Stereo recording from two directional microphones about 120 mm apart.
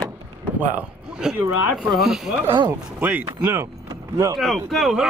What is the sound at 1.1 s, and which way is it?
Speech, 5° right (ahead or behind).